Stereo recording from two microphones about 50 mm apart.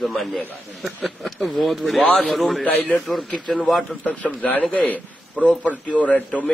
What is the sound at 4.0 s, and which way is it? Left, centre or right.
A man's voice, left.